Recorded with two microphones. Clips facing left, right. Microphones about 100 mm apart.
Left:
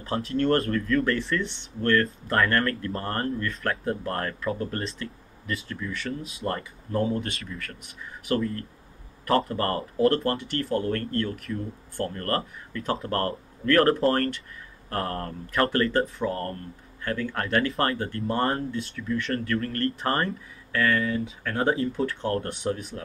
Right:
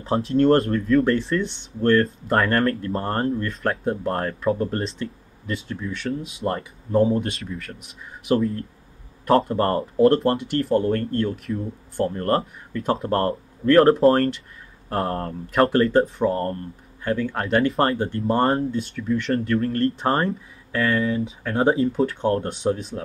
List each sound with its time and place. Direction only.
0.1 s speech: 30° right (ahead or behind)